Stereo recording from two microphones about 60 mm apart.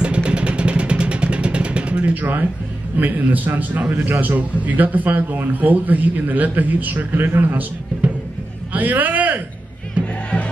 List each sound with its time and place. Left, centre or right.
0.0 s vehicle: centre
3.0 s a man's voice: right
10.0 s music: right